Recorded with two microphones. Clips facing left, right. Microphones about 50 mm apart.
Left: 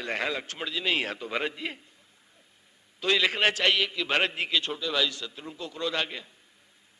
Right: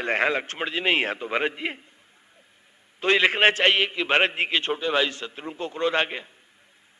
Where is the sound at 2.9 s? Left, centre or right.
Right.